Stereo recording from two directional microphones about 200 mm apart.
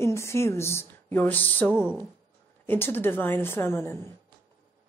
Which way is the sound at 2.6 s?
10° left (ahead or behind).